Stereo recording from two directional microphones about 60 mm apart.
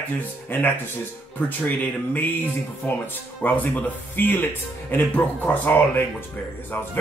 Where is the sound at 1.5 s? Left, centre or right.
Left.